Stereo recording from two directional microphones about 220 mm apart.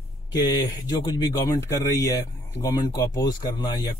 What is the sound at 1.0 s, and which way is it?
Speech, 20° left (ahead or behind).